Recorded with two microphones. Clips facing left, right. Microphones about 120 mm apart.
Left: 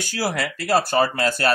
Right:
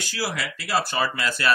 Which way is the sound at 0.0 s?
50° left (ahead or behind).